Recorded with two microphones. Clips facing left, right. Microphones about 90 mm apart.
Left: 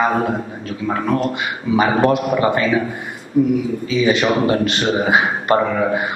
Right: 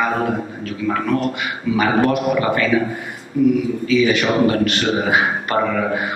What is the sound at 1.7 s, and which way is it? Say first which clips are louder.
A man's voice: left 2 dB; 25° left (ahead or behind).